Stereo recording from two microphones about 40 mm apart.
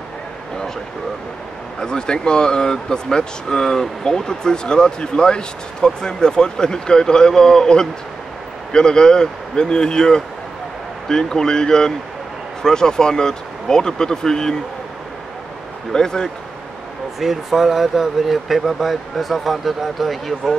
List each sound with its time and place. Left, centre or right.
1.8 s speech: centre
15.9 s speech: centre
17.2 s speech: centre